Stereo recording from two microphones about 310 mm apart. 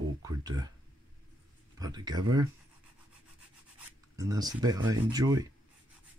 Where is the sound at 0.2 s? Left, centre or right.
Centre.